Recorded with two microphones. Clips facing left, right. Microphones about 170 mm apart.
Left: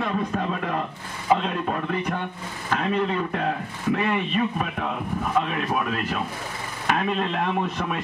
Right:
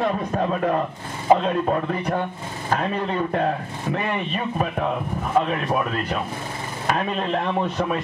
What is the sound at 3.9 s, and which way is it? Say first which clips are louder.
A man's voice: left 2 dB; 35° right (ahead or behind).